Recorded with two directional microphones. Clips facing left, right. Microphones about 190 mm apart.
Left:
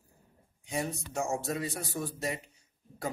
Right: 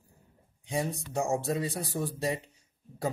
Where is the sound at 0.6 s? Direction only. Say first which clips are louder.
Right 2 dB; 30° right (ahead or behind).